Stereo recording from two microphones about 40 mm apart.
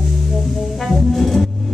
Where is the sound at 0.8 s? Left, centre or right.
Centre.